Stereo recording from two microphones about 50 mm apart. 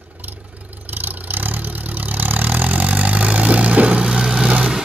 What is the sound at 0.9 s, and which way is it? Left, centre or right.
Vehicle, right.